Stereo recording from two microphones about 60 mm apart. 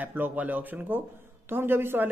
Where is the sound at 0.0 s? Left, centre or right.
Right.